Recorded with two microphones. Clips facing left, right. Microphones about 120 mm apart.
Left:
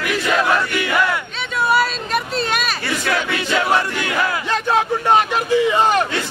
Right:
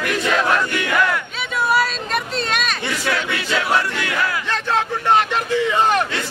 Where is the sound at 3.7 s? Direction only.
25° left (ahead or behind).